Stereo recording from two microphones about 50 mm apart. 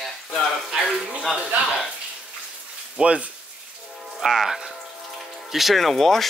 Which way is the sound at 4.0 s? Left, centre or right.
Centre.